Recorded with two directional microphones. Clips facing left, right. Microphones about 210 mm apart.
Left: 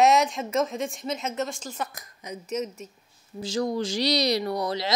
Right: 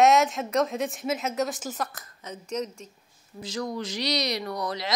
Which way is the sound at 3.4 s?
30° left (ahead or behind).